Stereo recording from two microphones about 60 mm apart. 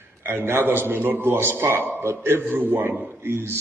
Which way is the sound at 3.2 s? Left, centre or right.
Right.